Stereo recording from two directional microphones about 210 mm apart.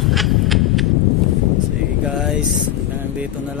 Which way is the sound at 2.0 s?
5° right (ahead or behind).